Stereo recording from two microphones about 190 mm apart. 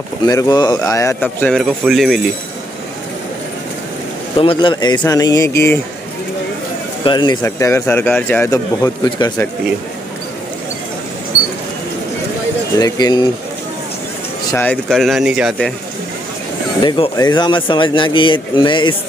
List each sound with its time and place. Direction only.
0.3 s speech: 20° left (ahead or behind)
1.6 s speech: centre (ahead or behind)
4.4 s speech: 25° left (ahead or behind)
7.1 s speech: 25° left (ahead or behind)
12.7 s speech: 20° left (ahead or behind)
14.5 s speech: 10° left (ahead or behind)
16.8 s speech: 25° left (ahead or behind)